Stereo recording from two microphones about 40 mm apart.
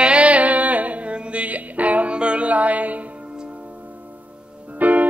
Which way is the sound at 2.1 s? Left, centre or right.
Right.